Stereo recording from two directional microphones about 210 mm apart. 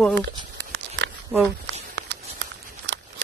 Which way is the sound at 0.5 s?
55° right (ahead or behind).